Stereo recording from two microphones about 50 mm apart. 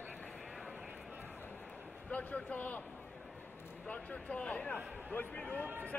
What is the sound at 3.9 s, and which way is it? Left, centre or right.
A man's voice, left.